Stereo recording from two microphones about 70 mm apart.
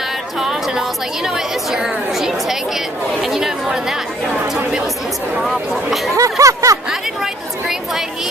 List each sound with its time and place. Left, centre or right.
0.4 s a woman's voice: centre
6.1 s a sound: right
6.9 s a woman's voice: centre